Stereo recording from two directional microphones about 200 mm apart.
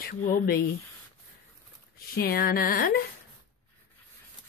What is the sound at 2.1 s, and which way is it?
Speech, 50° left (ahead or behind).